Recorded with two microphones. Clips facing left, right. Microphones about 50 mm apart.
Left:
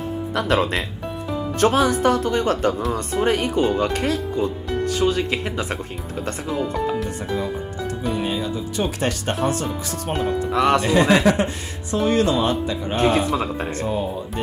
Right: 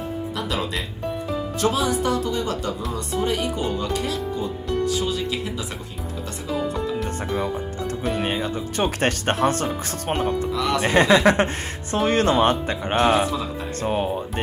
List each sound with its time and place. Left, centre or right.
0.3 s speech: left
8.0 s speech: right
10.5 s speech: left
10.8 s speech: right